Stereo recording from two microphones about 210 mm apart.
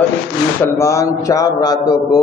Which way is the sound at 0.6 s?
15° left (ahead or behind).